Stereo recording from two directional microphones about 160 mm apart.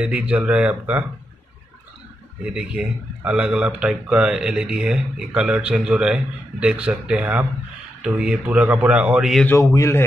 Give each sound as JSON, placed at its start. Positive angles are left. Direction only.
{"t": 0.0, "sound": "a man's voice", "side_deg": -5}
{"t": 2.4, "sound": "a man's voice", "side_deg": -5}
{"t": 9.5, "sound": "a man's voice", "side_deg": 15}